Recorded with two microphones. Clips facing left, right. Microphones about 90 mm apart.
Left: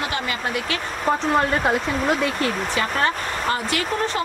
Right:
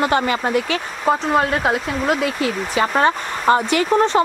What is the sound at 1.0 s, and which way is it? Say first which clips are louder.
Speech: right 2 dB; 10° right (ahead or behind).